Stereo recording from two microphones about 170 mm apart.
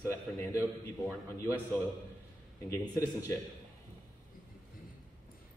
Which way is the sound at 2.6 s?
15° left (ahead or behind).